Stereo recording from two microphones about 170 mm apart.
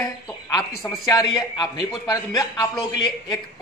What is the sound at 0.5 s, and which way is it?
A man's voice, 20° left (ahead or behind).